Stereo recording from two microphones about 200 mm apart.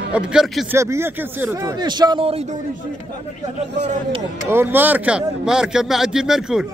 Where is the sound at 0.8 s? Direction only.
15° right (ahead or behind); by 2.4 s 30° right (ahead or behind).